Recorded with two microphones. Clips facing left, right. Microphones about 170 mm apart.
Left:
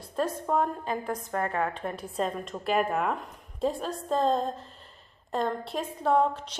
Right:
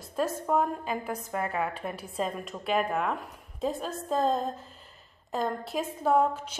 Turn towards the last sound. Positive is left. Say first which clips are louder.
# even
turn(degrees=-5)  # may be behind; listen again after turning